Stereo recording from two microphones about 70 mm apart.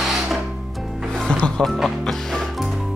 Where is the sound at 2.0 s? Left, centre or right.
Centre.